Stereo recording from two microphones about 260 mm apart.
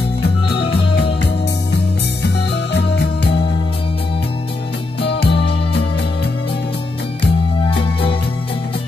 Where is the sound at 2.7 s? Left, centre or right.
Left.